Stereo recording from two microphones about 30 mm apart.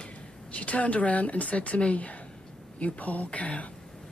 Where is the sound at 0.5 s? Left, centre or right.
Left.